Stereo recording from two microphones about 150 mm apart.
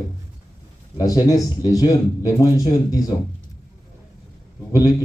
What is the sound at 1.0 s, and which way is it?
Speech, 20° left (ahead or behind).